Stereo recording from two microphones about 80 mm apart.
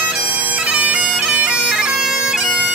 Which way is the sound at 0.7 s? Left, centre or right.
Centre.